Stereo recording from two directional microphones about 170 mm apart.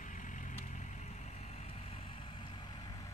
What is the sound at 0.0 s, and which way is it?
Vehicle, 50° left (ahead or behind).